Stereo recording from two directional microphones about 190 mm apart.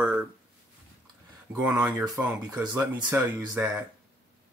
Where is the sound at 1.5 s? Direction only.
5° right (ahead or behind).